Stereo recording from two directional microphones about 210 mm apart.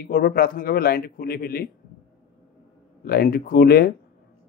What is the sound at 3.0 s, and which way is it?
Speech, 45° left (ahead or behind).